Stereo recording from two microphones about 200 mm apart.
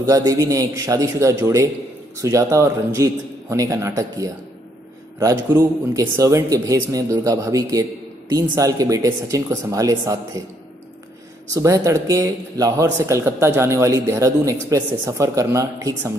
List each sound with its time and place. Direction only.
0.0 s a man's voice: 15° right (ahead or behind)
11.5 s a man's voice: 15° right (ahead or behind)